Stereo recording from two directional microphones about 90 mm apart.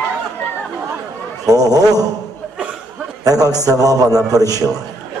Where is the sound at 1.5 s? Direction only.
45° right (ahead or behind).